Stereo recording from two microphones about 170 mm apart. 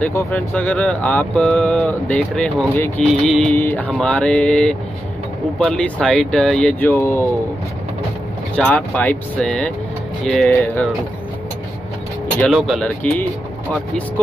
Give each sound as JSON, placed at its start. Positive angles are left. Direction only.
{"t": 0.0, "sound": "speech", "side_deg": 10}
{"t": 6.9, "sound": "speech", "side_deg": 15}
{"t": 8.5, "sound": "speech", "side_deg": 10}
{"t": 12.5, "sound": "speech", "side_deg": 0}